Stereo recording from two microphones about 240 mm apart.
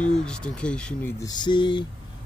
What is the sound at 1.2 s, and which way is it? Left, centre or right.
Speech, centre.